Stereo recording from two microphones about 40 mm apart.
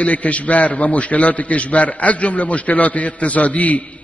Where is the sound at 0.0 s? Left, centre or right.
Left.